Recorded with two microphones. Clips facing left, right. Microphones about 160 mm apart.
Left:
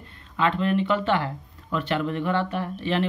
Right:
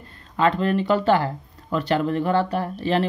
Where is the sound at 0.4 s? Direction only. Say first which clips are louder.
Right 3 dB; 40° right (ahead or behind).